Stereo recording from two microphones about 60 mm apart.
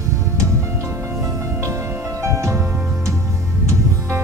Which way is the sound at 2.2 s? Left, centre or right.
Right.